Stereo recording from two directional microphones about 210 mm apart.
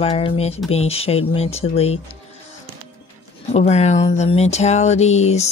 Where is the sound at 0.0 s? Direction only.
30° left (ahead or behind).